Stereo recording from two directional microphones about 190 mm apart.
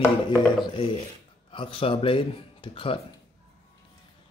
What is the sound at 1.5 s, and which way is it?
Speech, 25° left (ahead or behind).